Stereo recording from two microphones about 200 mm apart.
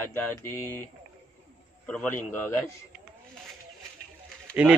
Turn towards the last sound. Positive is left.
turn(degrees=-5)  # may be behind; listen again after turning